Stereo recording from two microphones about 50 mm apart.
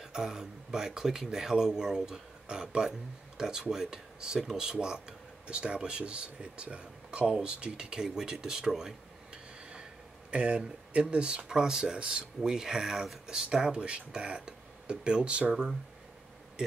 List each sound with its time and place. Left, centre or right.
0.0 s speech: centre